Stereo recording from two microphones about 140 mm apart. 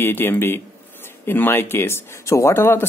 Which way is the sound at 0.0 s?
15° left (ahead or behind).